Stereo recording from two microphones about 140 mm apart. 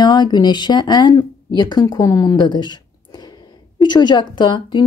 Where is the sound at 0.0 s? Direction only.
30° left (ahead or behind).